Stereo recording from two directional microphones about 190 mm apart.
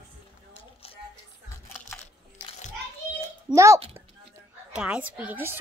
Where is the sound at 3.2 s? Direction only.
15° right (ahead or behind).